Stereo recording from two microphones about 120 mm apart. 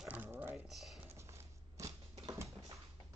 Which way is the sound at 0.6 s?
Centre (ahead or behind).